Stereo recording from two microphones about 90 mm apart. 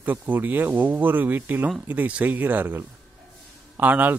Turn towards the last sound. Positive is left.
turn(degrees=-20)  # may be behind; listen again after turning